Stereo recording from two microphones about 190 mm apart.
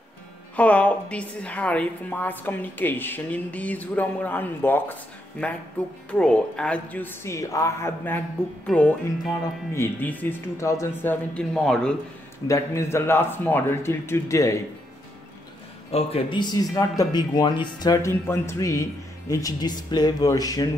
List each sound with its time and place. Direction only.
0.6 s a woman's voice: 5° left (ahead or behind)
6.0 s a woman's voice: 5° left (ahead or behind)
12.4 s a woman's voice: 15° left (ahead or behind)
15.9 s speech: 30° left (ahead or behind)